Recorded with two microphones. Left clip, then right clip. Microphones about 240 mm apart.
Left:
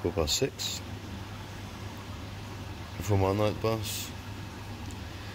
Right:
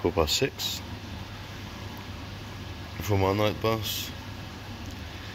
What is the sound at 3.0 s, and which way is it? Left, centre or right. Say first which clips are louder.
Speech: right 2 dB; centre.